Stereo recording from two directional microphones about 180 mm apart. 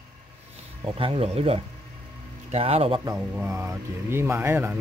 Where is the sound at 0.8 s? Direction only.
30° right (ahead or behind).